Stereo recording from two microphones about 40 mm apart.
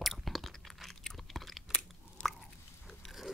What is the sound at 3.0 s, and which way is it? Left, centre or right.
Pig, centre.